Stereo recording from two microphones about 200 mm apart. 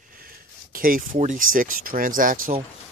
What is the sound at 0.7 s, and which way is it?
Speech, 45° right (ahead or behind).